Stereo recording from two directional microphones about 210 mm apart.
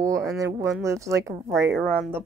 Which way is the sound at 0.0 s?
15° right (ahead or behind).